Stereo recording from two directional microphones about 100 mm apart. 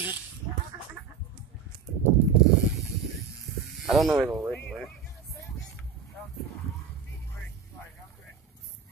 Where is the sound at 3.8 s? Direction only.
Centre (ahead or behind).